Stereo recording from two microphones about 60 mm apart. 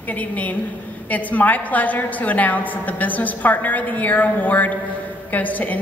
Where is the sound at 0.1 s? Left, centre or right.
Left.